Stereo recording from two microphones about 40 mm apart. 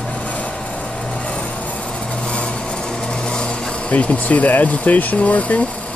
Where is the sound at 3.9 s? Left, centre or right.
Left.